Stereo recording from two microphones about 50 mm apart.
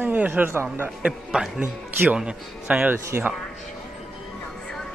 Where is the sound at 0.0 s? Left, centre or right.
Right.